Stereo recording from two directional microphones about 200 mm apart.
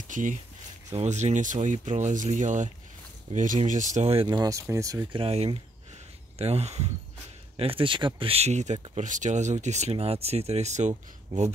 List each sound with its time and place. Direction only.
0.1 s speech: 40° right (ahead or behind); by 5.2 s 15° right (ahead or behind)
5.2 s speech: 30° right (ahead or behind)